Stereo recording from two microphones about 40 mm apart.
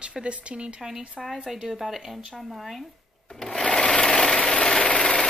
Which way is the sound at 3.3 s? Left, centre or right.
Centre.